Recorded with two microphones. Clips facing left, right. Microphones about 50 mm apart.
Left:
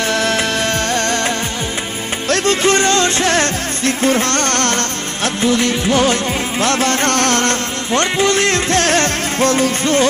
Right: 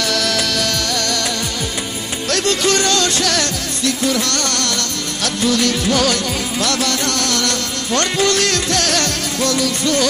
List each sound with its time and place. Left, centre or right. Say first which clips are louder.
0.0 s music: left 3 dB; left
7.9 s music: left 2 dB; left